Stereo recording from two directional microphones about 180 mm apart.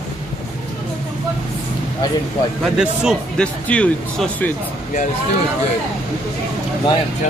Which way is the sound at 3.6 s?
5° left (ahead or behind).